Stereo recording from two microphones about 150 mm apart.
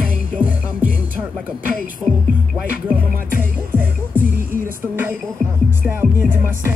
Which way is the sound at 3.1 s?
65° right (ahead or behind).